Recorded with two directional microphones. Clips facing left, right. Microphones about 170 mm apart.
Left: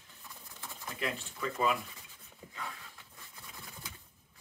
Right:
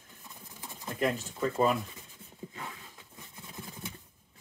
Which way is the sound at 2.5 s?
25° right (ahead or behind).